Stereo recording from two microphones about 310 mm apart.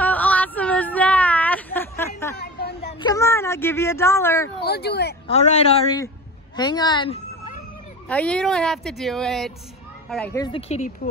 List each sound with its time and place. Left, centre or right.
0.0 s a sound: centre
2.4 s a sound: left
3.0 s speech: centre
4.6 s speech: left
5.3 s speech: left
6.5 s cat: centre
8.1 s speech: centre